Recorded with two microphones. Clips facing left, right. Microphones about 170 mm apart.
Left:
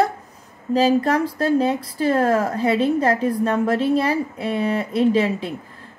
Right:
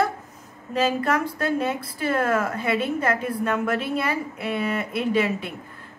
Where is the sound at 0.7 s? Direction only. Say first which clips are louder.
Left 5 dB; 35° left (ahead or behind).